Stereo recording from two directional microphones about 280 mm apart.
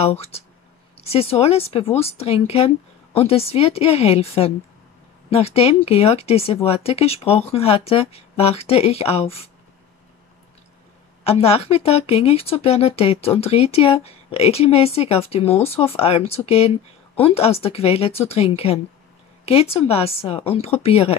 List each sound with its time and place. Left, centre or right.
1.1 s speech: left
11.2 s speech: left